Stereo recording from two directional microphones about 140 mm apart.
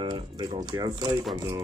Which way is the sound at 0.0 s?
30° right (ahead or behind).